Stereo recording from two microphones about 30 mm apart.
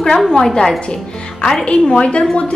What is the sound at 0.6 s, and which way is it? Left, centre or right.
A woman's voice, left.